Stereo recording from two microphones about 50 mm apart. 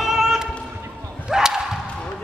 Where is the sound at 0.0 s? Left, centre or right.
Centre.